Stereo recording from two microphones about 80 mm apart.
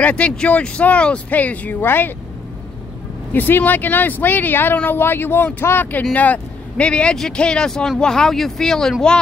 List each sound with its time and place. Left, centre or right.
0.0 s speech: centre
3.3 s speech: left; by 8.9 s centre